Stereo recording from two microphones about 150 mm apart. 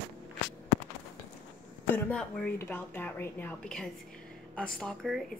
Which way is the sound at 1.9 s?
10° left (ahead or behind).